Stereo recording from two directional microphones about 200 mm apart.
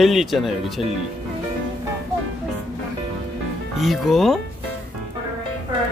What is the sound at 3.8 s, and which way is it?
Speech, centre (ahead or behind).